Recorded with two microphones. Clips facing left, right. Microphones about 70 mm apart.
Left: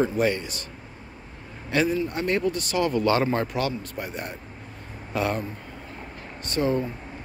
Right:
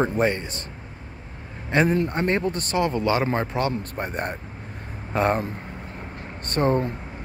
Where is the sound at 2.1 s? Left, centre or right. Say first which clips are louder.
Right 1 dB; right.